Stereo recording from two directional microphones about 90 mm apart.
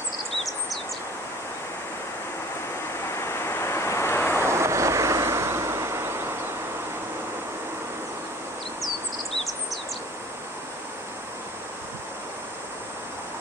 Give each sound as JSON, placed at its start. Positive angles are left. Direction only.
{"t": 3.2, "sound": "vehicle", "side_deg": 30}
{"t": 4.4, "sound": "vehicle", "side_deg": -30}